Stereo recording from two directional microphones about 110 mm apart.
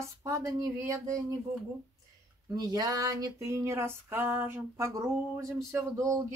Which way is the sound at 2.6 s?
35° right (ahead or behind).